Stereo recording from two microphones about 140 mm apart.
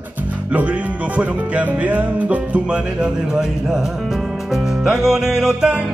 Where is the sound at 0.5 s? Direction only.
10° right (ahead or behind).